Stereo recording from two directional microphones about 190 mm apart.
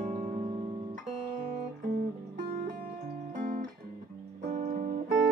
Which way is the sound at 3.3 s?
40° right (ahead or behind).